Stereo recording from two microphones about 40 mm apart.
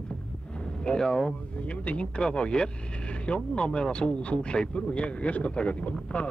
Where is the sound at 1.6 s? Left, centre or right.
Left.